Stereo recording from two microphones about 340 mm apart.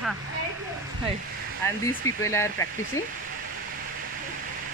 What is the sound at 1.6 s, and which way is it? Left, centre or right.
Speech, centre.